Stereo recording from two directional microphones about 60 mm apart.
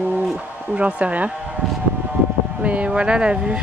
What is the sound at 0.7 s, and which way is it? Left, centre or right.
Speech, right.